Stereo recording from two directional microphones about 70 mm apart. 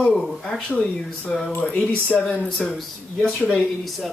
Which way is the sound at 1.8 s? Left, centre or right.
Centre.